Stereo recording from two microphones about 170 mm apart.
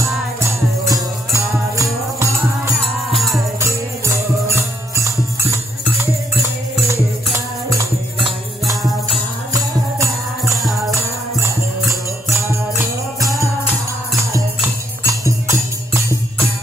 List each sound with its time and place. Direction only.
0.8 s music: 20° right (ahead or behind)
10.4 s music: centre (ahead or behind)
15.0 s music: 20° right (ahead or behind)